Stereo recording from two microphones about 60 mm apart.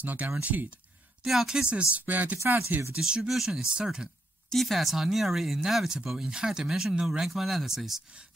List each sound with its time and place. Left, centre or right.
0.0 s speech: right
1.2 s speech: centre
1.6 s speech: centre
2.0 s speech: right
3.0 s speech: centre
4.5 s speech: centre